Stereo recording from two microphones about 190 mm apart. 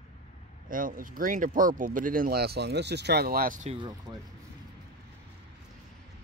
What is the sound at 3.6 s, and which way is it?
Speech, 25° right (ahead or behind).